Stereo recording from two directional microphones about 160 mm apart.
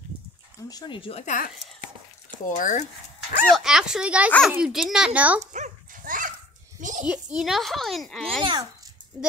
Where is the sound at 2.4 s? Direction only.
50° left (ahead or behind).